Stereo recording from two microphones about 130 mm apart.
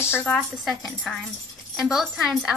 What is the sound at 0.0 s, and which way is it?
Speech, 20° left (ahead or behind).